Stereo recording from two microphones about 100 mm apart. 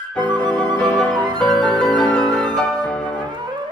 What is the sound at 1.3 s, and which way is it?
Music, 50° right (ahead or behind).